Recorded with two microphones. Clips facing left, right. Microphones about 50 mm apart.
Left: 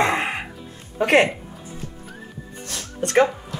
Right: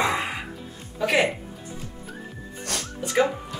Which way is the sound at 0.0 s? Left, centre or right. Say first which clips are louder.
Left 4 dB; left.